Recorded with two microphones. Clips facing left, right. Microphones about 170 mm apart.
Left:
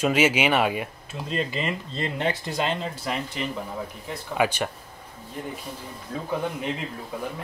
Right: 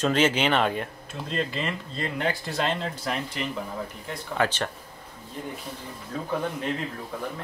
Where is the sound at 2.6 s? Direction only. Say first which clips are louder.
Even; 5° left (ahead or behind).